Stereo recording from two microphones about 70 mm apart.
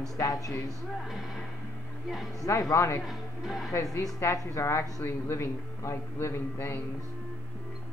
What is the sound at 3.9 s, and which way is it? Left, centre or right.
A man's voice, left.